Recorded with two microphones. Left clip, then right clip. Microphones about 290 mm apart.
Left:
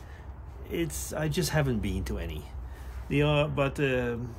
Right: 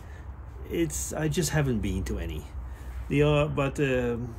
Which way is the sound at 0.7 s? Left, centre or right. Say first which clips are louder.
Right 3 dB; centre.